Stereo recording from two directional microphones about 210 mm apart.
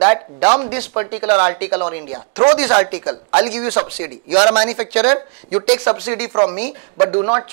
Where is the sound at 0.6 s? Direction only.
10° right (ahead or behind).